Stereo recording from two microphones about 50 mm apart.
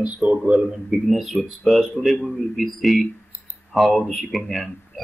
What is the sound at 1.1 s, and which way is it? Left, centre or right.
Speech, centre.